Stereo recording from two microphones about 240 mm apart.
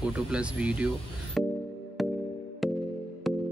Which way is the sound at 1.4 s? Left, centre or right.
Centre.